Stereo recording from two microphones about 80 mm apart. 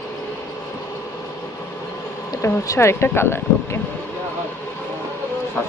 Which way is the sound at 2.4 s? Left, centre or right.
Left.